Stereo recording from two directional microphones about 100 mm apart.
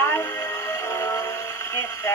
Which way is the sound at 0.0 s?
30° left (ahead or behind).